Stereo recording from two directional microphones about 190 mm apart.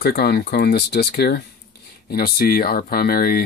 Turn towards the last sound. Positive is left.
turn(degrees=50)  # may be behind; listen again after turning